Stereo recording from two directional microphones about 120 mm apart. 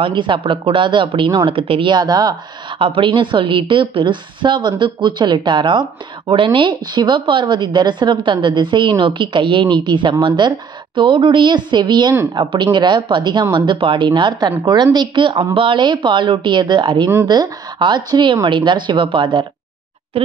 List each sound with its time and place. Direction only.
0.0 s a woman's voice: 45° right (ahead or behind)
2.8 s a woman's voice: 45° right (ahead or behind)